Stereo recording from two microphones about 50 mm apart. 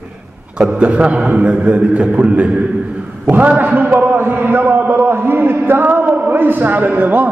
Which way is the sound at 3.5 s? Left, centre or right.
Right.